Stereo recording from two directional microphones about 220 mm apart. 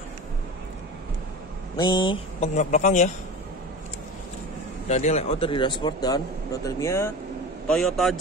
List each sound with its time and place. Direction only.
1.8 s speech: 20° left (ahead or behind)
4.8 s speech: 30° left (ahead or behind); by 7.1 s 15° left (ahead or behind)
7.6 s a man's voice: centre (ahead or behind)